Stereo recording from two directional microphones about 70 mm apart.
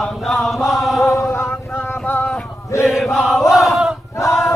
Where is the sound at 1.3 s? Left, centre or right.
Left.